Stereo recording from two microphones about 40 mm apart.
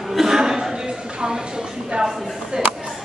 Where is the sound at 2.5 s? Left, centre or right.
Centre.